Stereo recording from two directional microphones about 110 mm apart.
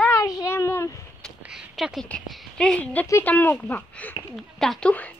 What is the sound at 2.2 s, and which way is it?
A woman's voice, 5° left (ahead or behind).